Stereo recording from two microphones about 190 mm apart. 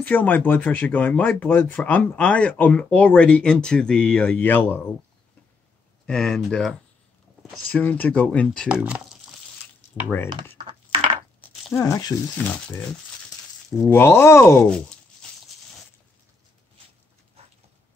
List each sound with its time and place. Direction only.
0.0 s speech: 10° left (ahead or behind)
6.0 s speech: centre (ahead or behind)
8.6 s speech: 5° right (ahead or behind)
10.7 s a sound: 25° right (ahead or behind)
11.7 s speech: 15° left (ahead or behind)
13.8 s speech: 10° left (ahead or behind)